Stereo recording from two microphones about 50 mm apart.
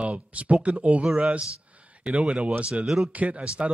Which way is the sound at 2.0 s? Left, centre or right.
Right.